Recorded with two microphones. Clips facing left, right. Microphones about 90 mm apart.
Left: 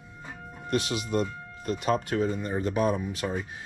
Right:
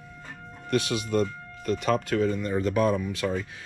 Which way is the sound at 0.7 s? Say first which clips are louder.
Right 2 dB; 20° left (ahead or behind).